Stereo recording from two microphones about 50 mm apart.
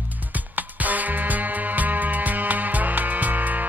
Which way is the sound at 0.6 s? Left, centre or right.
Right.